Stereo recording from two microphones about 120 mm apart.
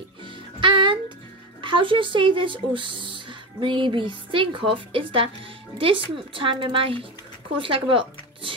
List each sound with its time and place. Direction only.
0.2 s music: 45° right (ahead or behind)
1.6 s speech: 45° right (ahead or behind)